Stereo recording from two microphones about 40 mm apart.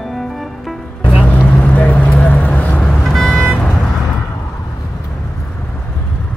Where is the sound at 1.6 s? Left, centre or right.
Left.